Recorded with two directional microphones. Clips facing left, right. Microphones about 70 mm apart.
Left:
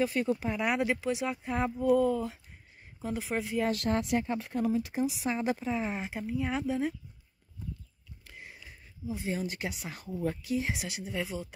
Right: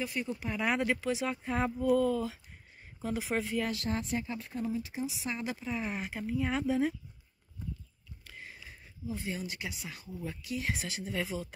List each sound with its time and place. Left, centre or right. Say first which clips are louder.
0.0 s speech: left 7 dB; left
0.5 s speech: left 1 dB; centre
3.7 s speech: left 5 dB; left
4.9 s speech: left 6 dB; left
5.3 s speech: left 6 dB; left
5.7 s speech: left 3 dB; centre
6.2 s speech: right 1 dB; centre
8.2 s a sound: even; centre
9.3 s speech: left 4 dB; left
10.6 s speech: left 1 dB; centre